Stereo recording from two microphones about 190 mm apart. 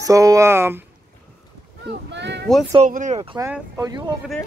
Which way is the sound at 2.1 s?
65° right (ahead or behind).